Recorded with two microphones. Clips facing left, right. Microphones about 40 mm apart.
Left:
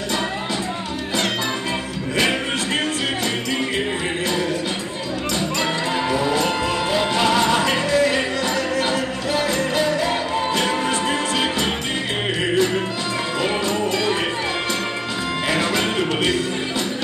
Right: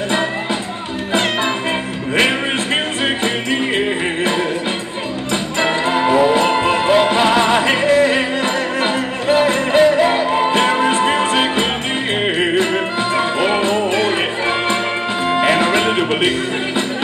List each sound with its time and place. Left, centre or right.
3.7 s music: right
5.6 s music: right
15.3 s music: right